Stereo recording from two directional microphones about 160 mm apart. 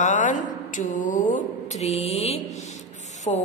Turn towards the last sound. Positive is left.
turn(degrees=40)  # may be behind; listen again after turning